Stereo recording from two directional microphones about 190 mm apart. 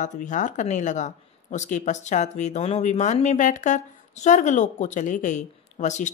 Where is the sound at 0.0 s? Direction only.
40° left (ahead or behind).